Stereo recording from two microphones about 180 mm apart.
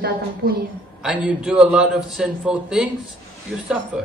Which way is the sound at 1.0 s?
5° right (ahead or behind).